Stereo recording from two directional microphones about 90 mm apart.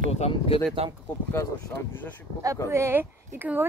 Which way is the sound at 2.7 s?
30° right (ahead or behind).